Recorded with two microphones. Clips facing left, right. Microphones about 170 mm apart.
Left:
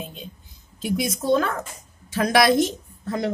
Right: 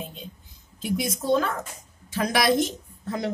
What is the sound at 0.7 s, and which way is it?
A woman's voice, 80° left.